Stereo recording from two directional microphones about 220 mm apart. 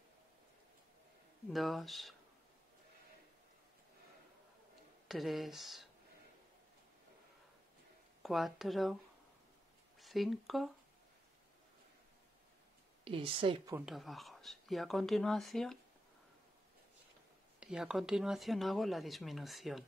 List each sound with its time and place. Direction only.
1.5 s speech: centre (ahead or behind)
5.0 s speech: centre (ahead or behind)
8.2 s speech: centre (ahead or behind)
9.9 s speech: centre (ahead or behind)
13.0 s speech: 25° right (ahead or behind)
13.7 s speech: centre (ahead or behind)
17.6 s speech: 5° right (ahead or behind)